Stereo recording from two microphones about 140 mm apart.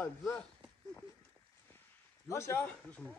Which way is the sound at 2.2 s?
20° left (ahead or behind).